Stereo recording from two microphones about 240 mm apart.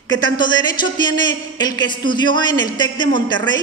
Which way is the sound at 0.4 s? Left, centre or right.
Centre.